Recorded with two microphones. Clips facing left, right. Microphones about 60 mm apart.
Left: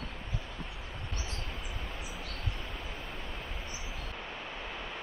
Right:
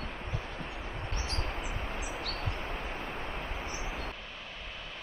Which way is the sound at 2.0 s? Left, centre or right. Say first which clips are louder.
Right 5 dB; right.